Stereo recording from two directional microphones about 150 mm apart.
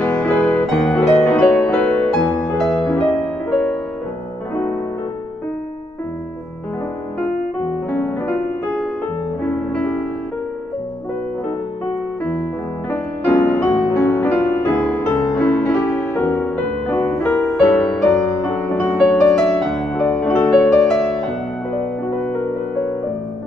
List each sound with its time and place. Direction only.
0.0 s music: 10° left (ahead or behind)
7.9 s music: 15° left (ahead or behind)
9.4 s music: 10° left (ahead or behind)
12.9 s music: 20° left (ahead or behind)
17.5 s music: 5° left (ahead or behind)
22.2 s music: 5° left (ahead or behind)